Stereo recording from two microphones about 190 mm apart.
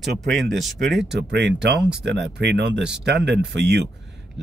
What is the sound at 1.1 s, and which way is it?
Speech, 65° right (ahead or behind).